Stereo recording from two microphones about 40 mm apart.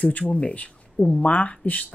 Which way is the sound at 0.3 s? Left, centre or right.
Left.